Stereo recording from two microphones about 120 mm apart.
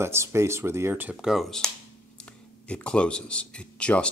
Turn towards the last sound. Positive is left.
turn(degrees=10)  # may be behind; listen again after turning